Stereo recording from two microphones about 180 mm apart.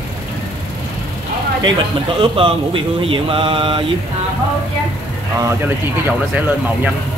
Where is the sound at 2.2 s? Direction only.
30° right (ahead or behind).